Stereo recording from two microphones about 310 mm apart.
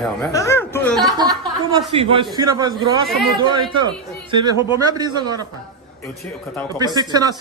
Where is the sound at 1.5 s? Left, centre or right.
Centre.